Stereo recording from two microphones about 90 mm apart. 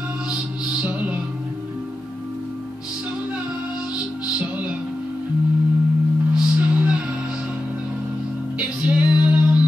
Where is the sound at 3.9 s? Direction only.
15° right (ahead or behind).